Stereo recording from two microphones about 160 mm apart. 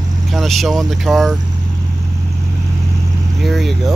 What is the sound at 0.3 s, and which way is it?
Speech, centre (ahead or behind).